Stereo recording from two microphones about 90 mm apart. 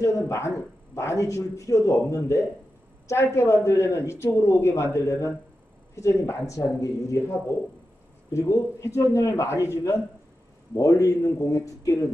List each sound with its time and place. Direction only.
0.0 s a man's voice: 30° left (ahead or behind)